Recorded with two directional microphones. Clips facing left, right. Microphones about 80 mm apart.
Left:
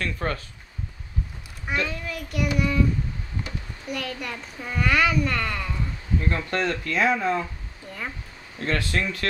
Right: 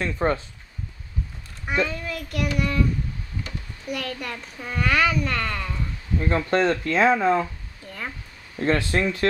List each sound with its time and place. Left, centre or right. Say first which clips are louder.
0.0 s speech: right 5 dB; right
1.9 s child singing: right 1 dB; centre
3.8 s a child's voice: right 1 dB; centre
6.2 s speech: right 6 dB; right
8.5 s speech: right 4 dB; right